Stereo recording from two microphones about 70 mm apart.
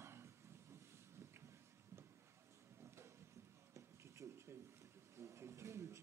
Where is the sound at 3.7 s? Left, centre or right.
Right.